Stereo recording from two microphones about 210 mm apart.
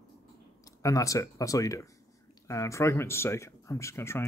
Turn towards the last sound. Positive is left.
turn(degrees=10)  # may be behind; listen again after turning